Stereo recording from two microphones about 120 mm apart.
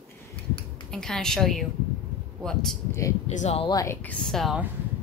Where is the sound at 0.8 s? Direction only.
5° left (ahead or behind).